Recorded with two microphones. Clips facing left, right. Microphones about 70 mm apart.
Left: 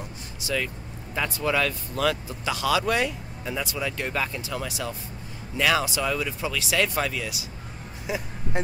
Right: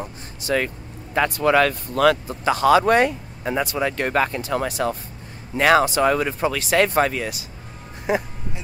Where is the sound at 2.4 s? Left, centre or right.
Right.